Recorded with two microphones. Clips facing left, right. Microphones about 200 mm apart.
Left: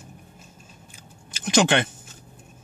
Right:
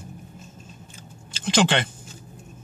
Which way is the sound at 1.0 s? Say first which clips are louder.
Right 2 dB; 15° left (ahead or behind).